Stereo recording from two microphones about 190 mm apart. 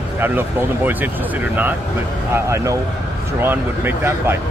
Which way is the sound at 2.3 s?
15° right (ahead or behind).